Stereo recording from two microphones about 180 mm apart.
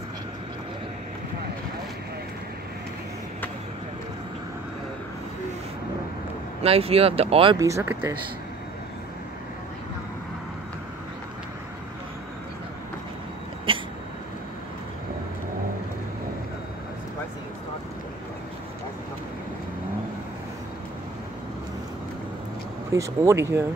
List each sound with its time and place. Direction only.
6.6 s speech: 35° right (ahead or behind)
7.5 s speech: 15° right (ahead or behind)
13.7 s a sound: 30° right (ahead or behind)
22.9 s speech: 15° right (ahead or behind)